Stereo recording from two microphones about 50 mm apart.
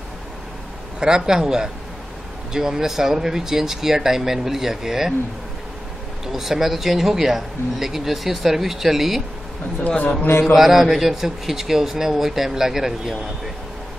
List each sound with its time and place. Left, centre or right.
0.9 s a man's voice: centre
6.2 s speech: centre
9.8 s a man's voice: left
10.4 s a man's voice: centre